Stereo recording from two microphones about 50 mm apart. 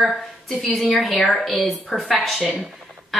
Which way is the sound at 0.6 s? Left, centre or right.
Centre.